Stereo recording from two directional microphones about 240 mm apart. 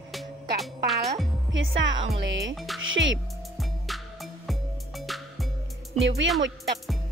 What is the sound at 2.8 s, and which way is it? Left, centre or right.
Speech, right.